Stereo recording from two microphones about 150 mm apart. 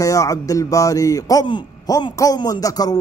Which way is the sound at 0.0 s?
20° left (ahead or behind).